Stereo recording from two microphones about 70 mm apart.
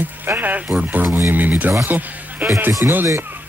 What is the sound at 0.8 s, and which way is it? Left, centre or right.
Speech, right.